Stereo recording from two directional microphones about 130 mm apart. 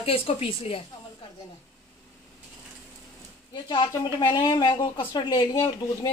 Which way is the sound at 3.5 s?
40° left (ahead or behind).